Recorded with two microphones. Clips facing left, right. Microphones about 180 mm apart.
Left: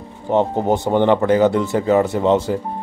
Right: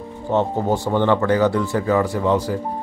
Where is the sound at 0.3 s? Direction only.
20° left (ahead or behind).